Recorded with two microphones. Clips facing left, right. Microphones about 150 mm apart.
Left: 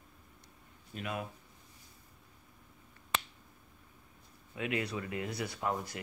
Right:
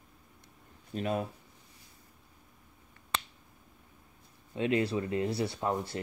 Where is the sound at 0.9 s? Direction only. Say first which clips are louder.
Right 7 dB; 35° right (ahead or behind).